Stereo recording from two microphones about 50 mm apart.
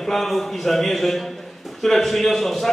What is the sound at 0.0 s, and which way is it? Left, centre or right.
A man's voice, centre.